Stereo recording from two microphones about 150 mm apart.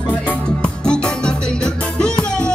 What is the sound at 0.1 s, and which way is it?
Music, 10° left (ahead or behind).